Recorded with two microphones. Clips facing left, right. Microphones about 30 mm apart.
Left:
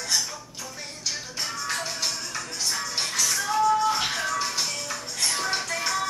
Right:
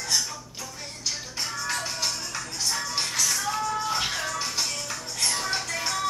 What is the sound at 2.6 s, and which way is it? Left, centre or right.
Music, centre.